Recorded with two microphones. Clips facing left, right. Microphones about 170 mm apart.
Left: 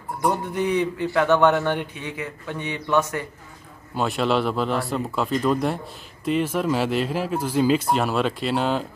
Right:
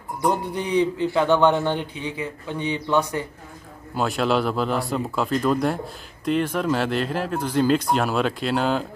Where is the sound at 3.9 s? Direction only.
Centre (ahead or behind).